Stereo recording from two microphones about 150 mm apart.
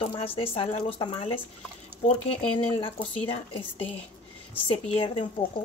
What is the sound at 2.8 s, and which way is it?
A woman's voice, 35° left (ahead or behind).